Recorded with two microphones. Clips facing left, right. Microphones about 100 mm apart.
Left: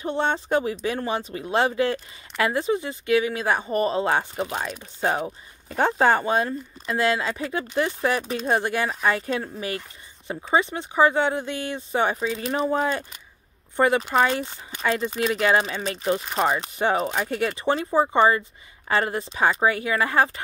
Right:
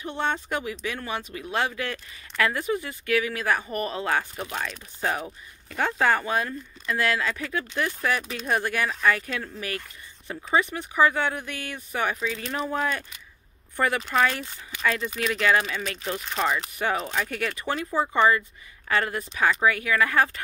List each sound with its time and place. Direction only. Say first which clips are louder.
0.0 s speech: left 4 dB; 30° left (ahead or behind)